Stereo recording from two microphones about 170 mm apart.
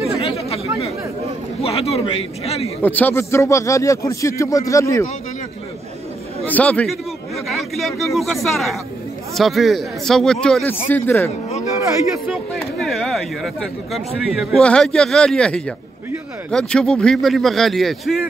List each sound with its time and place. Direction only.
0.2 s chatter: 35° left (ahead or behind)
1.6 s a man's voice: 35° left (ahead or behind)
2.8 s speech: 10° left (ahead or behind)
6.4 s speech: 10° left (ahead or behind)
12.3 s speech: centre (ahead or behind)